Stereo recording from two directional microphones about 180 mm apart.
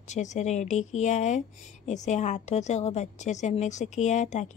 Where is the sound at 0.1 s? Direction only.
40° left (ahead or behind).